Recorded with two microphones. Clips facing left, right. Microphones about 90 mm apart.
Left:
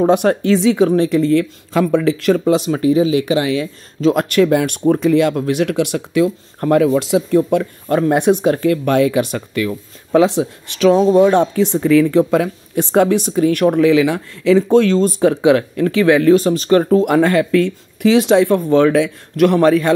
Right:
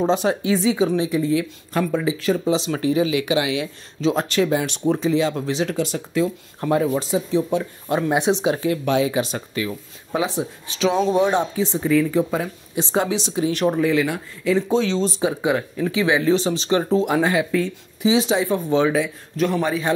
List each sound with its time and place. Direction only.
0.0 s speech: 60° left (ahead or behind)
0.6 s speech: 75° left (ahead or behind)
0.8 s speech: 60° left (ahead or behind)
2.7 s speech: 35° left (ahead or behind)
4.1 s speech: 60° left (ahead or behind); by 7.3 s 80° left
7.5 s speech: 50° left (ahead or behind)
10.1 s speech: 70° left (ahead or behind); by 13.7 s 55° left (ahead or behind)
13.7 s speech: 90° left
14.7 s speech: 55° left (ahead or behind); by 19.9 s 70° left (ahead or behind)